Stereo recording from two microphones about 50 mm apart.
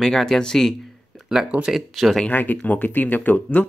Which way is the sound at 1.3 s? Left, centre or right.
Centre.